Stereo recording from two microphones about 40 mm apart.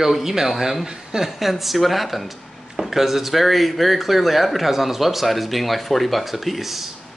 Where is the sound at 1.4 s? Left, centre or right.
Centre.